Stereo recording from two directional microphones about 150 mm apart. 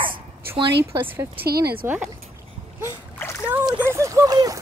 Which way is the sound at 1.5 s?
90° right.